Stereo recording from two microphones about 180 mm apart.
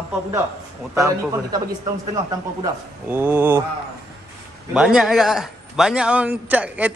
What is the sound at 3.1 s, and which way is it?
Speech, 10° right (ahead or behind).